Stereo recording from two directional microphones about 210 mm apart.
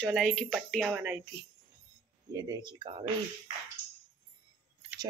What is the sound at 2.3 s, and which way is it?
Speech, 20° right (ahead or behind).